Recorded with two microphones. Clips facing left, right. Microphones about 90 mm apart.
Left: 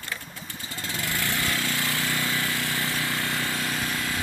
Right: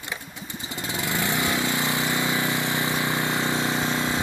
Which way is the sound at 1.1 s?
20° right (ahead or behind).